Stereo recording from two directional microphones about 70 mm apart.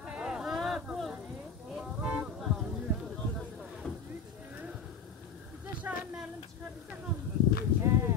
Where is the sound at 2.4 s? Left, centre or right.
Centre.